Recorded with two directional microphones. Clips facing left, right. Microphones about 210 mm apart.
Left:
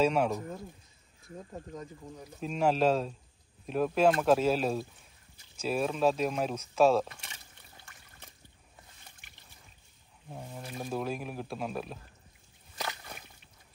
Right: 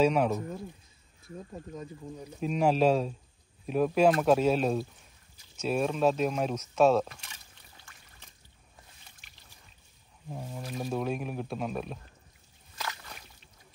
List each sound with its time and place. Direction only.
0.0 s speech: centre (ahead or behind)
2.4 s speech: centre (ahead or behind)
10.3 s speech: 5° right (ahead or behind)
12.7 s slosh: 20° left (ahead or behind)